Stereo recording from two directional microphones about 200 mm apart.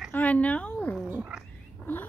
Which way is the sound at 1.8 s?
10° left (ahead or behind).